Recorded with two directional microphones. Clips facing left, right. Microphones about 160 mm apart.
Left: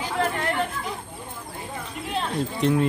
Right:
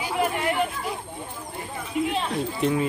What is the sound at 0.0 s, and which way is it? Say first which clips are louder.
Chatter: right 1 dB; 10° right (ahead or behind).